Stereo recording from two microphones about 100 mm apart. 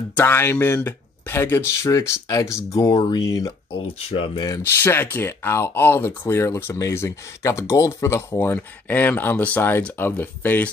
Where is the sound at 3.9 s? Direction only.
70° left (ahead or behind).